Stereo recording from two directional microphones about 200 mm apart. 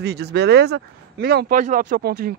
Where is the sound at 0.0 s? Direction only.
55° right (ahead or behind).